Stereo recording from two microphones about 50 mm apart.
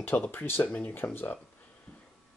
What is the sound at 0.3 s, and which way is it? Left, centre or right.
Speech, left.